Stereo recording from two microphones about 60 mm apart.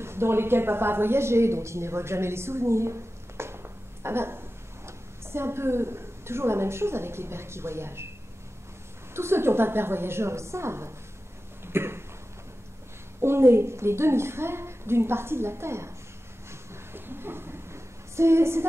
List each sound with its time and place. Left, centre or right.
0.0 s speech: right
9.1 s a woman's voice: right
11.6 s cough: right
13.2 s a woman's voice: right
16.4 s a sound: right